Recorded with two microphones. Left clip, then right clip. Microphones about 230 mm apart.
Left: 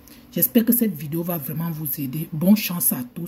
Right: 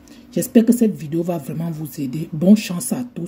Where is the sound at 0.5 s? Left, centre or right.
Left.